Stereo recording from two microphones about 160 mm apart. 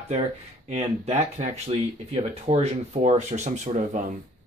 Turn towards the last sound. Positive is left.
turn(degrees=-50)  # may be behind; listen again after turning